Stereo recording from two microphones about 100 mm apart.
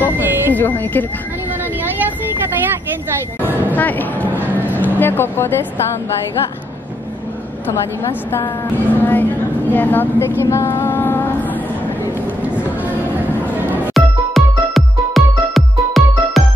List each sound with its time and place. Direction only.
0.3 s a sound: 20° right (ahead or behind)
0.6 s speech: 20° left (ahead or behind)
3.7 s vehicle: 15° left (ahead or behind)
4.9 s speech: 20° left (ahead or behind)
8.0 s speech: 30° left (ahead or behind)
8.9 s a woman's voice: 20° left (ahead or behind)
10.4 s a sound: 25° left (ahead or behind)
13.9 s music: centre (ahead or behind)